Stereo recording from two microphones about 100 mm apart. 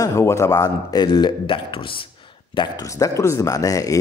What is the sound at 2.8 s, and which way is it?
Speech, 35° left (ahead or behind).